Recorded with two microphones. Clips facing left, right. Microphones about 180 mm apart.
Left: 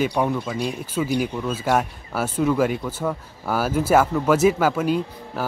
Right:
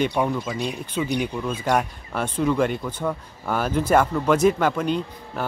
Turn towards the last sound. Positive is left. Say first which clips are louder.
# left 2 dB
turn(degrees=5)  # may be behind; listen again after turning